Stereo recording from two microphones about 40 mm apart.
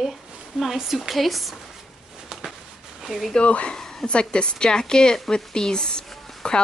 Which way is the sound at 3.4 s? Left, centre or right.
Left.